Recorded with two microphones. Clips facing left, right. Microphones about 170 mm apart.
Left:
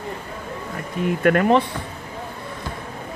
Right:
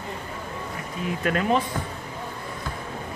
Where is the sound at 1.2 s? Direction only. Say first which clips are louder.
Left 7 dB; 65° left (ahead or behind).